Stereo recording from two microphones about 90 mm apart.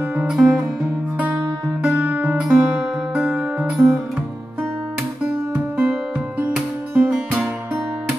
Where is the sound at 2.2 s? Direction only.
15° right (ahead or behind).